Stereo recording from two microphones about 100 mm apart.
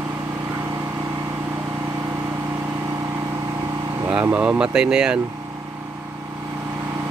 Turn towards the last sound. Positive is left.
turn(degrees=-10)  # may be behind; listen again after turning